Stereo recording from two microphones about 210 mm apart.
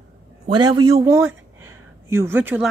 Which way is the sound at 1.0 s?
10° right (ahead or behind).